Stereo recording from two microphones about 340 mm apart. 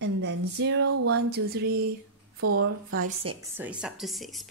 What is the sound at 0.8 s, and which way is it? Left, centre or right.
Speech, right.